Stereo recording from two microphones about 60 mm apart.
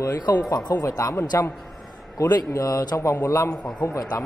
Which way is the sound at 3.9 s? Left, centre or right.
Left.